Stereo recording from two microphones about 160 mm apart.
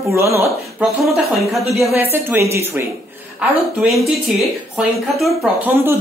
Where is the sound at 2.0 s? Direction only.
15° right (ahead or behind).